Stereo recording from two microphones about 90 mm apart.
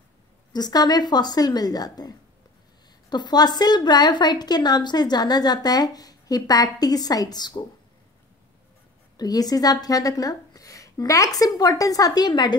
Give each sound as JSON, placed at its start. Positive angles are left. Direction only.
{"t": 0.5, "sound": "a woman's voice", "side_deg": 50}
{"t": 9.1, "sound": "a woman's voice", "side_deg": 45}